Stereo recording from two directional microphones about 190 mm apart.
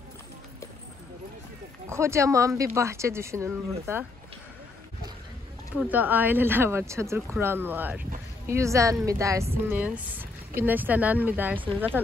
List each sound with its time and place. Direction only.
1.9 s speech: 15° right (ahead or behind)
5.8 s speech: 10° right (ahead or behind)